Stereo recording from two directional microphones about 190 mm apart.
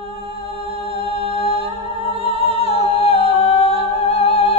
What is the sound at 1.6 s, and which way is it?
Music, 30° right (ahead or behind).